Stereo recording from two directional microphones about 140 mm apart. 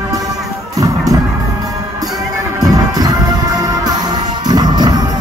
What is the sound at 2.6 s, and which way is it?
Music, 25° right (ahead or behind).